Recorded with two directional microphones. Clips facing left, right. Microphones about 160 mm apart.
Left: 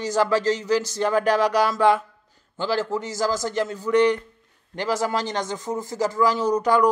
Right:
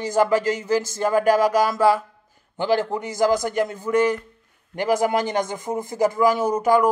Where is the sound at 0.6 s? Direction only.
50° right (ahead or behind).